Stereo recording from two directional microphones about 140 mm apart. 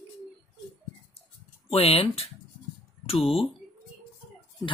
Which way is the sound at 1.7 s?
45° left (ahead or behind).